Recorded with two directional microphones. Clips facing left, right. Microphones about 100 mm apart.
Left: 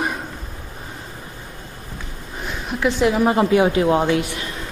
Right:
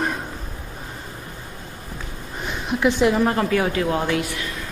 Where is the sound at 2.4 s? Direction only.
Centre (ahead or behind).